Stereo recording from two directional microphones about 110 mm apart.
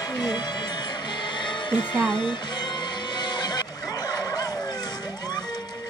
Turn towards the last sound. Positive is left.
turn(degrees=35)  # may be behind; listen again after turning